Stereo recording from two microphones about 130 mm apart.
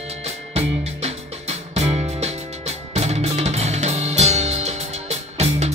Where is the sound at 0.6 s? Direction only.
55° right (ahead or behind).